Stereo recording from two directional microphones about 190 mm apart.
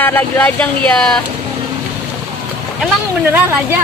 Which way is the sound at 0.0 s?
10° left (ahead or behind).